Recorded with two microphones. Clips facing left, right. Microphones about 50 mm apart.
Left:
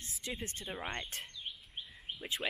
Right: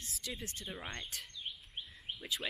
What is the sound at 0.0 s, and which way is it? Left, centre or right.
Speech, left.